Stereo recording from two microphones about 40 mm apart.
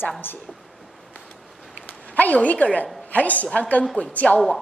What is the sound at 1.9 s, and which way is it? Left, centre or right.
A woman's voice, left.